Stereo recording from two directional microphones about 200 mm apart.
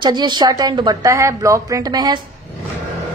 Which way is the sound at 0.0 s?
20° right (ahead or behind).